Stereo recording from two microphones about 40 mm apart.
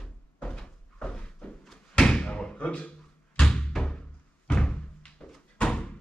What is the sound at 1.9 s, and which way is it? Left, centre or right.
Slam, left.